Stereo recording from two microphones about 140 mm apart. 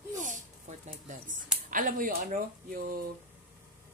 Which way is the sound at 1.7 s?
75° right (ahead or behind).